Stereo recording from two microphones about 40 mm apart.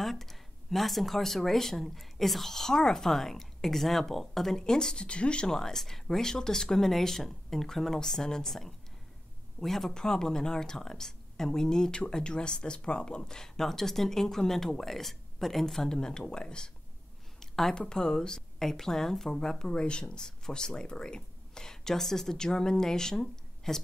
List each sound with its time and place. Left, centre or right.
0.0 s speech: centre; by 5.6 s left
5.6 s speech: centre
9.9 s speech: centre
17.4 s a sound: centre
17.8 s speech: centre
19.7 s speech: left